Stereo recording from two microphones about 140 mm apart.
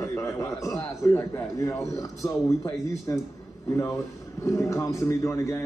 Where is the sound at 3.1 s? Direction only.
20° left (ahead or behind).